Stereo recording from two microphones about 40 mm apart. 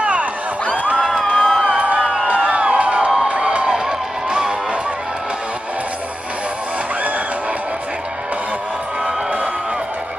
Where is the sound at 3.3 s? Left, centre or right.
Right.